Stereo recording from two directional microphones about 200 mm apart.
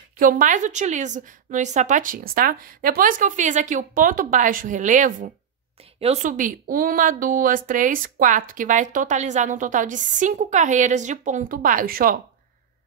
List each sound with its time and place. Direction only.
0.2 s speech: 40° right (ahead or behind)